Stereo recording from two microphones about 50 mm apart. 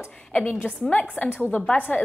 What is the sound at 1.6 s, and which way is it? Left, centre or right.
Speech, left.